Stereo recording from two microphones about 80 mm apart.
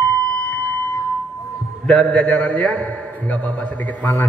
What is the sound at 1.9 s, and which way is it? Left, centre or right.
A man's voice, centre.